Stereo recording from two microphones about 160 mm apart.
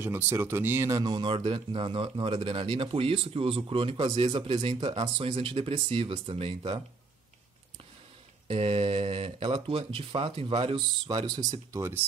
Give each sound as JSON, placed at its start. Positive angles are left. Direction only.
{"t": 0.0, "sound": "speech", "side_deg": -15}
{"t": 8.5, "sound": "speech", "side_deg": -35}